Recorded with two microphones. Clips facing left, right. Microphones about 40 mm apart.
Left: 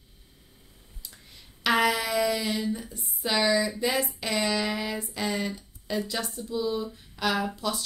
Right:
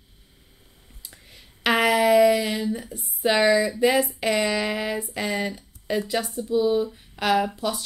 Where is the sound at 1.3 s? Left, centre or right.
Right.